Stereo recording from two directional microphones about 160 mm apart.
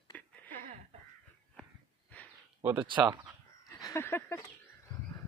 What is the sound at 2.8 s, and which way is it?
Speech, 30° right (ahead or behind).